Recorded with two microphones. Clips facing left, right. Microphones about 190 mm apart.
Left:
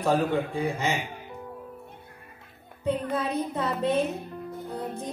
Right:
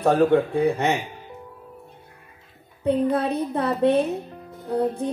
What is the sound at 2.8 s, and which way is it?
Speech, 65° right (ahead or behind).